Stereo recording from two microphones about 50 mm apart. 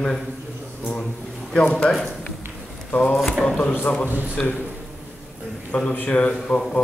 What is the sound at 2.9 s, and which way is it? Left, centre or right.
Speech, left.